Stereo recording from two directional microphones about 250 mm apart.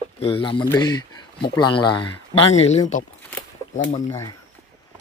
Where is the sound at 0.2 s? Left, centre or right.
Left.